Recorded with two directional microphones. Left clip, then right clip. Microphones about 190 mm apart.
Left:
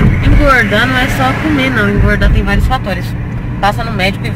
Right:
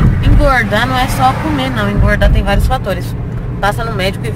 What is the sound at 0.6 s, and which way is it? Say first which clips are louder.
Speech: left 2 dB; centre (ahead or behind).